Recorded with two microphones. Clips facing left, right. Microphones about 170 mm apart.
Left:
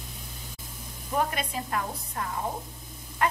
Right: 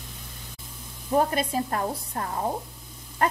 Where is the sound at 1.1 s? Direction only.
35° right (ahead or behind).